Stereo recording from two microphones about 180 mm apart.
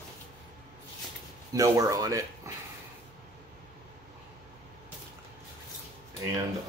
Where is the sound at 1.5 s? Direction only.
20° right (ahead or behind).